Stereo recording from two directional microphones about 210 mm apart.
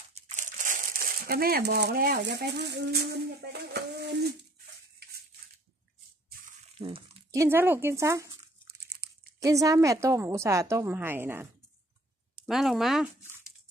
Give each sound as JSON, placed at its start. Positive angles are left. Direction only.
{"t": 0.1, "sound": "speech", "side_deg": -40}
{"t": 6.4, "sound": "dog", "side_deg": -30}
{"t": 7.2, "sound": "a woman's voice", "side_deg": -10}
{"t": 9.4, "sound": "a woman's voice", "side_deg": -15}
{"t": 12.4, "sound": "speech", "side_deg": 0}